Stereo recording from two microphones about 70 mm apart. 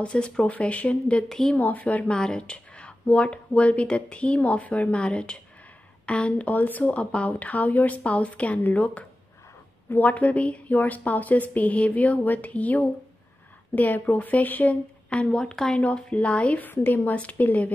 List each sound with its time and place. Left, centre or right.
0.0 s a woman's voice: centre
1.6 s a woman's voice: left